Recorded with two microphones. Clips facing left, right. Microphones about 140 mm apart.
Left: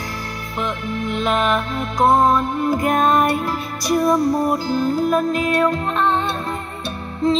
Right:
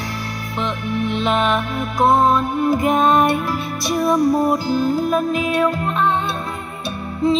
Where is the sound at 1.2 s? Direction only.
15° right (ahead or behind).